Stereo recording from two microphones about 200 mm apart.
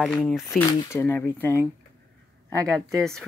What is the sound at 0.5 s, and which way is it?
Speech, 15° left (ahead or behind).